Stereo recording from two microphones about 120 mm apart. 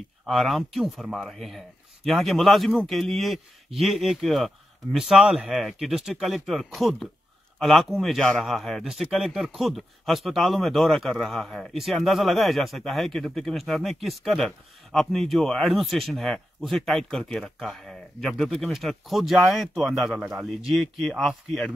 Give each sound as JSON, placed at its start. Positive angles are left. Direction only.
{"t": 0.3, "sound": "speech", "side_deg": 0}